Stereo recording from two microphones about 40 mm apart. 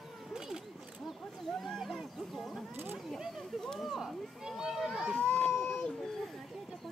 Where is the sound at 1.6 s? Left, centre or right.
Centre.